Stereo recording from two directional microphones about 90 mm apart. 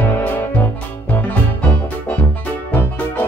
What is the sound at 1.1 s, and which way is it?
Music, 15° left (ahead or behind).